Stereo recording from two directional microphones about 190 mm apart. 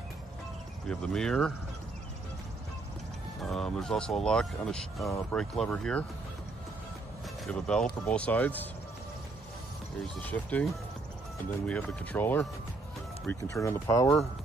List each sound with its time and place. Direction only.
0.8 s speech: 5° left (ahead or behind)
3.4 s speech: 5° left (ahead or behind)
7.4 s speech: 5° left (ahead or behind)
10.2 s speech: 10° left (ahead or behind)